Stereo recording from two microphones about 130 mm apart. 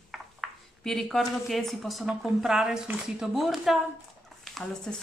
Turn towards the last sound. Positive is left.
turn(degrees=5)  # may be behind; listen again after turning